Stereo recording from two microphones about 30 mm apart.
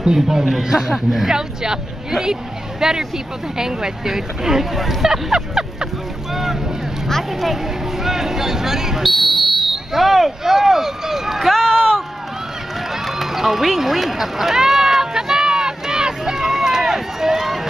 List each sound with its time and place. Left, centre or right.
0.0 s a woman's voice: centre
5.1 s a woman's voice: centre
8.0 s speech: centre
9.0 s speech: centre
11.5 s speech: centre
13.0 s run: centre; by 16.3 s right
16.3 s run: centre